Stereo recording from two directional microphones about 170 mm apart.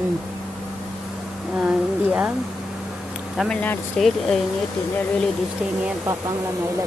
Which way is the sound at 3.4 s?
10° left (ahead or behind).